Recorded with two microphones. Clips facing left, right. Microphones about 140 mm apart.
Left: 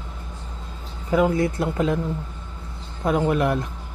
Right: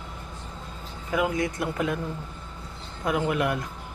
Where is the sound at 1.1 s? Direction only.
35° left (ahead or behind).